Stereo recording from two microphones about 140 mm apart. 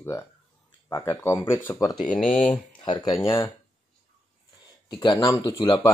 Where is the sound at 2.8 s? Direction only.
35° left (ahead or behind).